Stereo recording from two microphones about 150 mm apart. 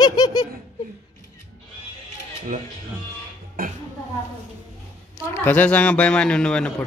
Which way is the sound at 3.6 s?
70° right (ahead or behind).